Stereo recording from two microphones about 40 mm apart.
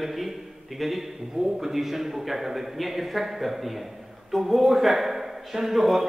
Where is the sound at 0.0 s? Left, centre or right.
Centre.